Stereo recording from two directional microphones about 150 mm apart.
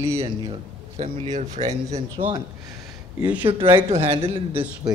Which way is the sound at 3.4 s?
35° right (ahead or behind).